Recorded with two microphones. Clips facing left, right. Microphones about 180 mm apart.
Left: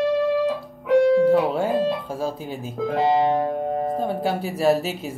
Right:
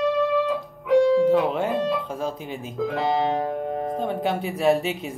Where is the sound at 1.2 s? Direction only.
5° left (ahead or behind).